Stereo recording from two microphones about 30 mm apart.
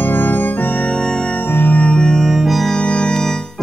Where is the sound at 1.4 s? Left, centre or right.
Left.